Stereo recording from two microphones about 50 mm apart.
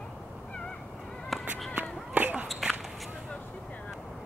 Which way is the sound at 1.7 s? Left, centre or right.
Right.